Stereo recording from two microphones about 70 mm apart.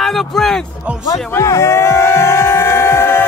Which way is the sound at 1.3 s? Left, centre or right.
Left.